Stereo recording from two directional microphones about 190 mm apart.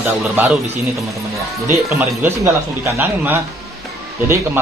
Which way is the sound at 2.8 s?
10° right (ahead or behind).